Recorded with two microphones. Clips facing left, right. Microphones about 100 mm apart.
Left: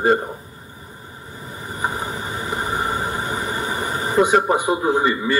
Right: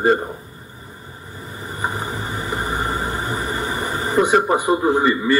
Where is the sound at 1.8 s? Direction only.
35° right (ahead or behind).